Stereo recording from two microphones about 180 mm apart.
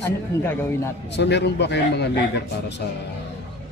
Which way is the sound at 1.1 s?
70° left (ahead or behind).